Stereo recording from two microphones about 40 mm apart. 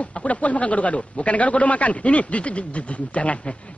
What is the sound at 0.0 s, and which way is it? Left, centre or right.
A man's voice, left.